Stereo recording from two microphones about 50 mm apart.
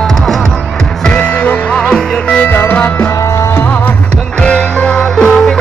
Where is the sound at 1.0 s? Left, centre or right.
Centre.